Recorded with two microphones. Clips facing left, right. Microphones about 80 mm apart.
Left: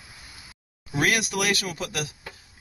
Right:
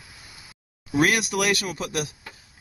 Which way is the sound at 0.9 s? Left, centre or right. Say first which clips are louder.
Right 3 dB; centre.